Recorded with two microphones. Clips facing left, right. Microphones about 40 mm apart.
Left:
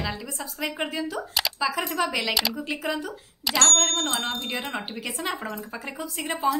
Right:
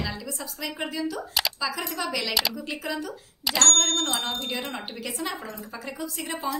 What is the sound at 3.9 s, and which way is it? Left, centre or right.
Speech, centre.